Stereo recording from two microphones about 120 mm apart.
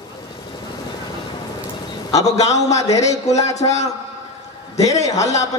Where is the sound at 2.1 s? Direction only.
30° left (ahead or behind).